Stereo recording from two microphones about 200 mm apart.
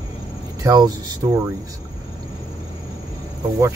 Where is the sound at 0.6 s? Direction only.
20° right (ahead or behind).